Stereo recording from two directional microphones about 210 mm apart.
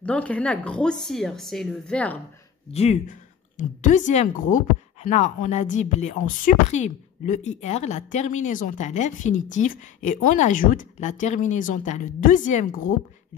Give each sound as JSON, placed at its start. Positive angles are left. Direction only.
{"t": 0.0, "sound": "speech", "side_deg": 5}
{"t": 2.7, "sound": "speech", "side_deg": 30}